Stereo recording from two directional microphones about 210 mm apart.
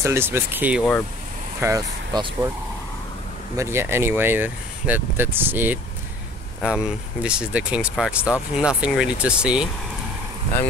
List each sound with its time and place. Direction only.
0.0 s speech: 10° right (ahead or behind)
3.5 s speech: 10° right (ahead or behind)